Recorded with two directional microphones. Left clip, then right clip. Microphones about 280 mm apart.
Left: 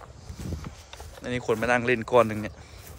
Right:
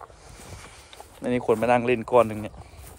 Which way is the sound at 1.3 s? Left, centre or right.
Centre.